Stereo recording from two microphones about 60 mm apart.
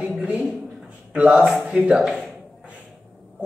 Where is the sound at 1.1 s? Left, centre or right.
Right.